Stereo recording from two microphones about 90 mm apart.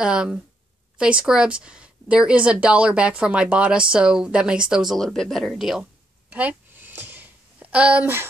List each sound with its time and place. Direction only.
0.0 s a woman's voice: 10° right (ahead or behind)
4.9 s speech: 5° left (ahead or behind)
6.3 s a sound: 20° right (ahead or behind)